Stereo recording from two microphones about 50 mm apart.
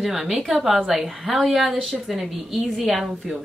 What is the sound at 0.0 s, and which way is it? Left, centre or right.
A woman's voice, centre.